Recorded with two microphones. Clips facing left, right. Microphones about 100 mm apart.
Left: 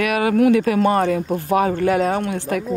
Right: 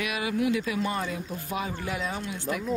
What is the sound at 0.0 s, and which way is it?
Speech, 60° left (ahead or behind).